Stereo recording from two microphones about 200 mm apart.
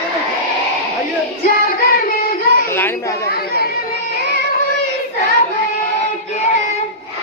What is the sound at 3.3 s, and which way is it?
Chatter, 50° left (ahead or behind).